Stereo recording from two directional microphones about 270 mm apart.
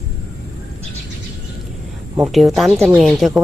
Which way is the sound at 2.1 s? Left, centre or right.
Centre.